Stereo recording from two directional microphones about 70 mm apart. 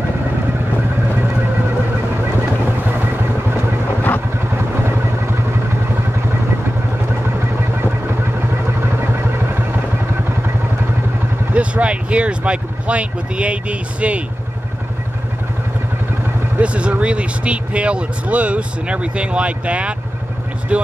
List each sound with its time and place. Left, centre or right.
11.5 s speech: centre
16.5 s speech: centre